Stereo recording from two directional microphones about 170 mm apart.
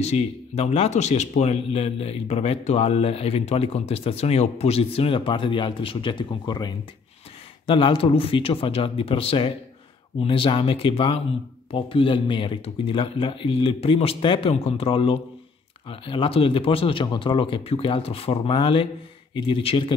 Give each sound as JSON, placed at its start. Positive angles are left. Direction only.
{"t": 0.0, "sound": "speech", "side_deg": 40}